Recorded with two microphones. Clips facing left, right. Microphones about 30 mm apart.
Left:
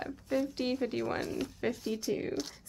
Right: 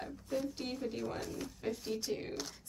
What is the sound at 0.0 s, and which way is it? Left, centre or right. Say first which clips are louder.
Speech: left 5 dB; left.